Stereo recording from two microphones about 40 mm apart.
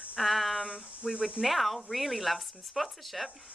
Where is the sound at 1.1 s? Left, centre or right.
Right.